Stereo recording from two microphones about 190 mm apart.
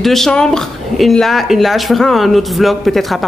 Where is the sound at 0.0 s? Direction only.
Centre (ahead or behind).